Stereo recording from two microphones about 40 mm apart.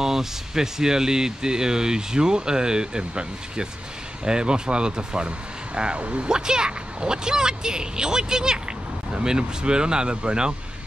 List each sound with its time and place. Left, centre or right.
0.0 s speech: centre